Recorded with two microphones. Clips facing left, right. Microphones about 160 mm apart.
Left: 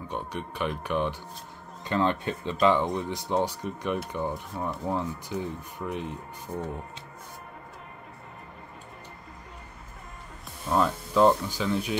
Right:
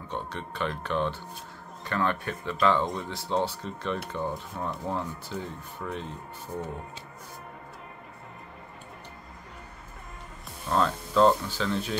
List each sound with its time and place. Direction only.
0.1 s a man's voice: 15° left (ahead or behind)
10.7 s speech: 10° left (ahead or behind)